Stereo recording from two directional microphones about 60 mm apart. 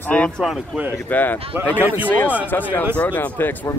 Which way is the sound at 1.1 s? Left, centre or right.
Left.